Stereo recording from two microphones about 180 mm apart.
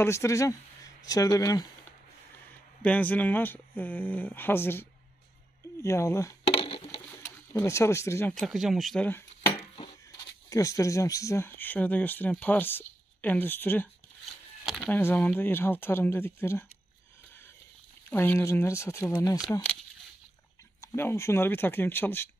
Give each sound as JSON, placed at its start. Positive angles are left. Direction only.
{"t": 0.0, "sound": "speech", "side_deg": 15}
{"t": 2.8, "sound": "speech", "side_deg": 10}
{"t": 6.5, "sound": "a sound", "side_deg": 30}
{"t": 7.1, "sound": "speech", "side_deg": 15}
{"t": 9.8, "sound": "speech", "side_deg": 20}
{"t": 18.1, "sound": "speech", "side_deg": 10}
{"t": 20.8, "sound": "speech", "side_deg": 15}